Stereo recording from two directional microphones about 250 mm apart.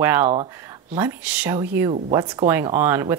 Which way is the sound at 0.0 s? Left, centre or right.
Centre.